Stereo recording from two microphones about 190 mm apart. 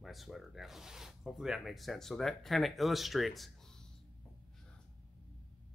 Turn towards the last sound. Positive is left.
turn(degrees=5)  # may be behind; listen again after turning